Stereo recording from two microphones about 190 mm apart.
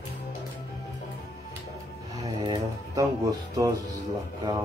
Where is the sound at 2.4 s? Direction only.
20° right (ahead or behind).